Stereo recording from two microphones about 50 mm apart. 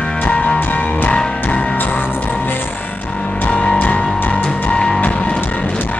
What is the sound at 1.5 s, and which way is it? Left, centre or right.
Music, left.